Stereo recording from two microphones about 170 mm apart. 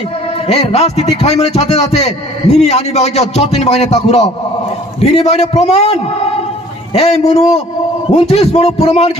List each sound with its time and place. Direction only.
0.5 s a man's voice: 40° left (ahead or behind)